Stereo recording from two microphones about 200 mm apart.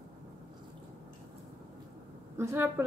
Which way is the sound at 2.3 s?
10° right (ahead or behind).